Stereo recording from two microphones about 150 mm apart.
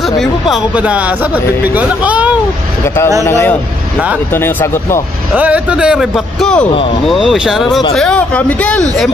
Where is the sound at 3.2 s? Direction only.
15° left (ahead or behind).